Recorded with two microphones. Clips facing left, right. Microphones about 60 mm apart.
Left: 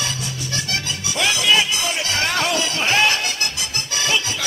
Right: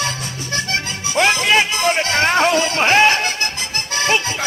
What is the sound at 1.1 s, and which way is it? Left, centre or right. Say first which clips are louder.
Music: right 4 dB; right.